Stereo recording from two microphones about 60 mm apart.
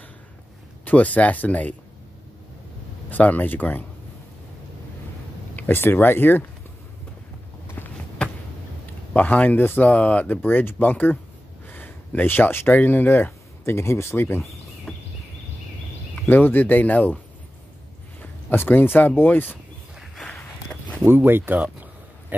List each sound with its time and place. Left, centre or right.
0.8 s speech: left
3.1 s speech: left
5.6 s speech: left
7.8 s a sound: left
9.1 s speech: left
14.9 s a sound: centre
16.3 s speech: left
18.2 s speech: left
21.0 s speech: right